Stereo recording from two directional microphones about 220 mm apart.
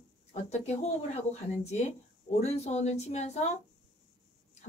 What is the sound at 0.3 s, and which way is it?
Speech, 30° left (ahead or behind).